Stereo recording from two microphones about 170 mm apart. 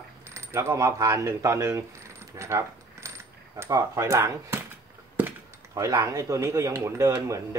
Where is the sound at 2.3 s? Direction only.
15° right (ahead or behind).